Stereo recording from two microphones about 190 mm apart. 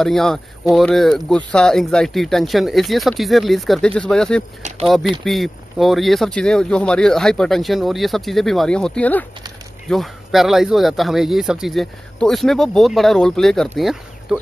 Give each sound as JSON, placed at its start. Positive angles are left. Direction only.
{"t": 0.0, "sound": "speech", "side_deg": 0}